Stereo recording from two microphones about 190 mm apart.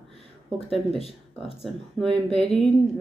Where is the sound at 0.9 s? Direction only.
30° left (ahead or behind).